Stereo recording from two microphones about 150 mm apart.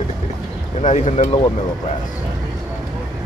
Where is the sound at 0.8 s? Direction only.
50° left (ahead or behind).